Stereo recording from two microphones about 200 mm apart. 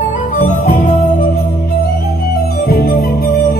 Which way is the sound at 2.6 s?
50° left (ahead or behind).